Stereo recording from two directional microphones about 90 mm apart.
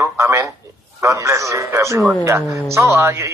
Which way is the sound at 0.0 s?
35° right (ahead or behind).